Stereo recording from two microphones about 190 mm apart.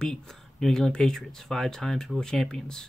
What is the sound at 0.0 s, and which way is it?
Speech, 5° left (ahead or behind).